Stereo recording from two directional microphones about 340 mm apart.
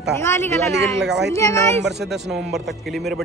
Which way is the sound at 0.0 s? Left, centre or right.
Centre.